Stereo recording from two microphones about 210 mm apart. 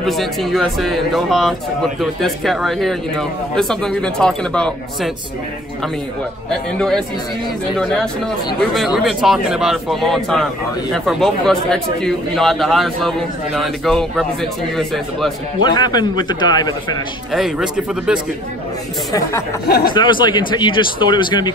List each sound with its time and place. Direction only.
0.0 s speech: centre (ahead or behind)
6.8 s speech: 5° left (ahead or behind)
15.6 s speech: 20° left (ahead or behind)
17.3 s speech: centre (ahead or behind)
19.9 s speech: 20° left (ahead or behind)